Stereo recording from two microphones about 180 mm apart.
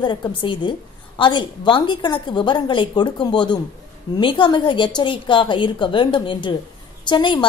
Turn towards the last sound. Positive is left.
turn(degrees=25)  # may be behind; listen again after turning